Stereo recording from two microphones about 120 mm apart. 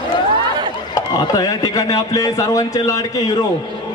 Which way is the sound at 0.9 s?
30° left (ahead or behind).